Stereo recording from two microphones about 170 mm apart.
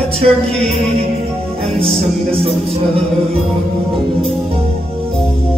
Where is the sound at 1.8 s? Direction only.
35° right (ahead or behind).